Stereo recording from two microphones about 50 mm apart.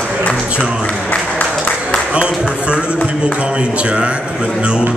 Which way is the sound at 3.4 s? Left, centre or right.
Right.